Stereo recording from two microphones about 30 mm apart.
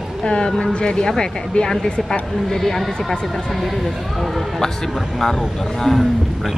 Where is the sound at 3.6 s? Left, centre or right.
Centre.